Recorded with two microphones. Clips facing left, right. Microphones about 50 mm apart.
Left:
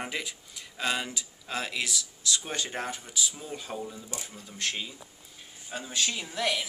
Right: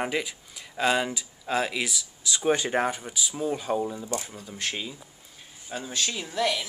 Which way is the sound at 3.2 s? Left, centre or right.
Centre.